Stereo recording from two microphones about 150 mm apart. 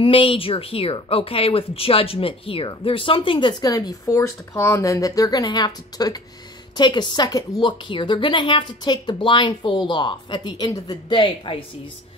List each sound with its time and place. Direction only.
0.0 s a woman's voice: 35° left (ahead or behind)